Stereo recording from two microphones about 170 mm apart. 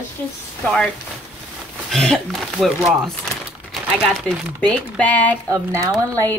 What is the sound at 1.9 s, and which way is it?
Speech, 5° left (ahead or behind).